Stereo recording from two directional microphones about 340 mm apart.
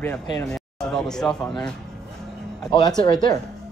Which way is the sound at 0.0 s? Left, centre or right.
Centre.